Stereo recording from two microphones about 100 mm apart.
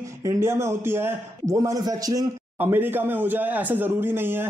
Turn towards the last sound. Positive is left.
turn(degrees=-20)  # may be behind; listen again after turning